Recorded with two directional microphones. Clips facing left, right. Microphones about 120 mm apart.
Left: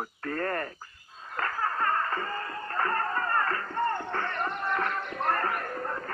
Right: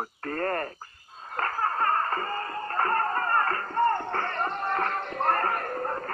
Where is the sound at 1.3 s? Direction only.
40° right (ahead or behind).